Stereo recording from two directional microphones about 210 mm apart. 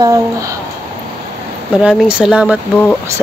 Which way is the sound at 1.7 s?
Centre (ahead or behind).